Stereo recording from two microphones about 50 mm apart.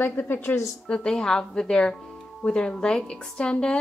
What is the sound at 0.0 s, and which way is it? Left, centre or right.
Speech, left.